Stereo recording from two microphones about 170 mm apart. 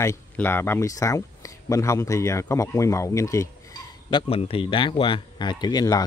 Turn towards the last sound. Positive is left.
turn(degrees=25)  # may be behind; listen again after turning